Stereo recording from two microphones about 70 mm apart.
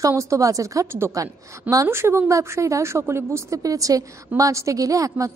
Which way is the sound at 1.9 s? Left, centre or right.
Right.